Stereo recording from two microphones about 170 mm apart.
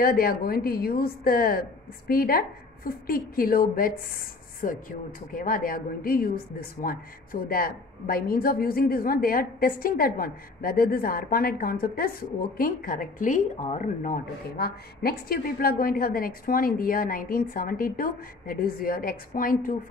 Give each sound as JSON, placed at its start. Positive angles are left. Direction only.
{"t": 0.0, "sound": "a woman's voice", "side_deg": 60}